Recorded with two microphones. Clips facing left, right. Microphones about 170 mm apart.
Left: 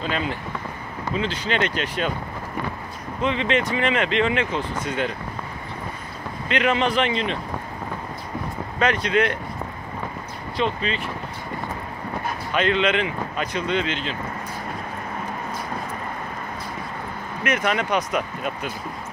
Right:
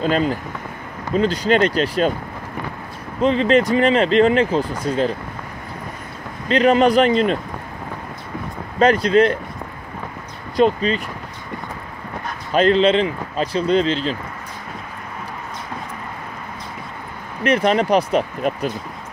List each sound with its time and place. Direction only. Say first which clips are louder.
0.0 s speech: right 7 dB; 40° right (ahead or behind)
3.2 s speech: right 7 dB; 35° right (ahead or behind)
6.5 s speech: right 7 dB; 40° right (ahead or behind)
8.7 s speech: right 7 dB; 35° right (ahead or behind)
10.5 s speech: right 8 dB; 40° right (ahead or behind)
12.5 s speech: right 7 dB; 35° right (ahead or behind)
17.4 s speech: right 7 dB; 30° right (ahead or behind)